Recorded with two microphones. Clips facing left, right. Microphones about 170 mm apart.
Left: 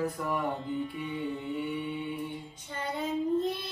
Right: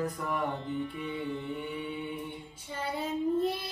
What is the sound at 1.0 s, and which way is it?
Mantra, 35° left (ahead or behind).